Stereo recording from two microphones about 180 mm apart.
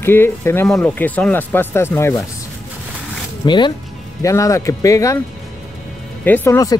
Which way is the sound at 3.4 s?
25° left (ahead or behind).